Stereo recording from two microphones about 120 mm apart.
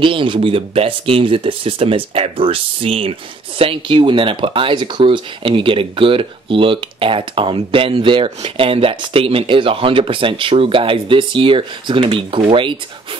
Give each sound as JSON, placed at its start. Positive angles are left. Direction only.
{"t": 0.0, "sound": "speech", "side_deg": -45}